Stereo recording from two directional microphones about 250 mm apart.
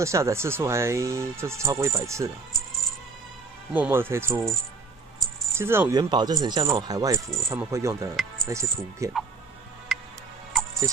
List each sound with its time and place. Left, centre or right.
0.0 s speech: centre
3.7 s speech: centre
5.5 s speech: centre
9.9 s music: centre